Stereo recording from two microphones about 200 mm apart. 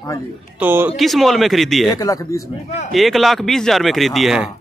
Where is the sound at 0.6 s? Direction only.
10° right (ahead or behind).